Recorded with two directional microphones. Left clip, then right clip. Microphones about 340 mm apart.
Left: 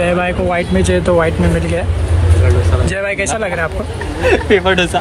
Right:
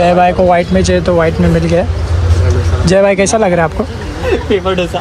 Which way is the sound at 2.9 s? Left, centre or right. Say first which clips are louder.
Right 11 dB; centre.